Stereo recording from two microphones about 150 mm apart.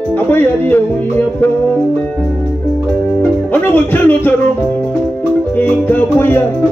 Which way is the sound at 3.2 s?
10° left (ahead or behind).